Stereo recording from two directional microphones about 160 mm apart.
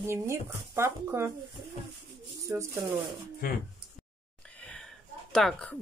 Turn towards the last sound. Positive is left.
turn(degrees=5)  # may be behind; listen again after turning